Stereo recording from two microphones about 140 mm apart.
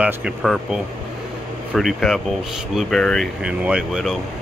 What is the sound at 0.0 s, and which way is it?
Speech, centre (ahead or behind).